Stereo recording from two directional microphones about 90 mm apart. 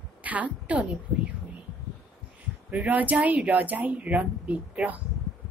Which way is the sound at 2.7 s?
15° right (ahead or behind).